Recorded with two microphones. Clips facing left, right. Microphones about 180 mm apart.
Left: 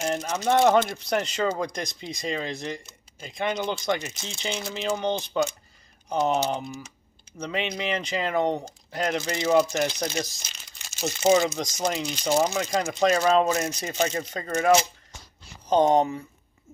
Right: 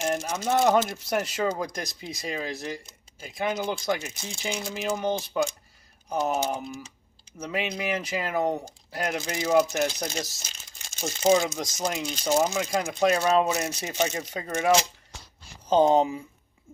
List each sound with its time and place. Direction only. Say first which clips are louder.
0.1 s speech: left 5 dB; 10° right (ahead or behind)
15.8 s speech: even; 5° right (ahead or behind)